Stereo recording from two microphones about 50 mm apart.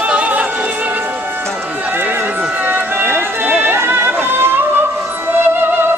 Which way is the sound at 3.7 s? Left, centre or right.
Right.